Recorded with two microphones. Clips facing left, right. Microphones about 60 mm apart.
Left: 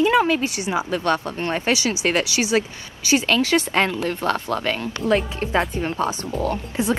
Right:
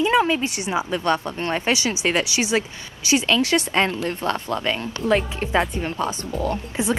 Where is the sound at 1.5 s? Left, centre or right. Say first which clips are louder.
Left 1 dB; right.